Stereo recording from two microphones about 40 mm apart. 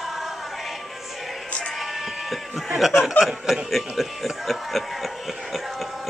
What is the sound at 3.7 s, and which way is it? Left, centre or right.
Music, centre.